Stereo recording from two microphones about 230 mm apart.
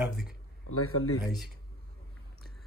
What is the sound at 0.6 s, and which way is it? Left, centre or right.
Speech, left.